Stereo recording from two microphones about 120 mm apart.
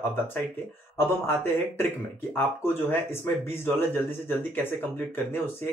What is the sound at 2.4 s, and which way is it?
Speech, 20° left (ahead or behind).